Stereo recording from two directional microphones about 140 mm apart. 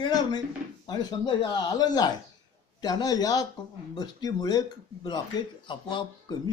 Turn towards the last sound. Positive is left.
turn(degrees=30)  # may be behind; listen again after turning